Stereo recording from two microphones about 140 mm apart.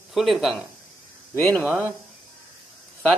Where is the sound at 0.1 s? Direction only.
Centre (ahead or behind).